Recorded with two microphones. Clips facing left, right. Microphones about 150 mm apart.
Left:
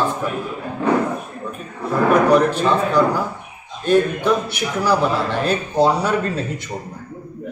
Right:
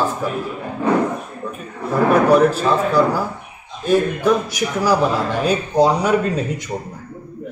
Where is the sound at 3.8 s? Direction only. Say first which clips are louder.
Even; 10° right (ahead or behind).